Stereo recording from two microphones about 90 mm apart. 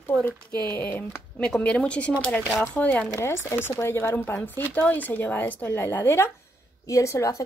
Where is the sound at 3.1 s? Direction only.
30° left (ahead or behind).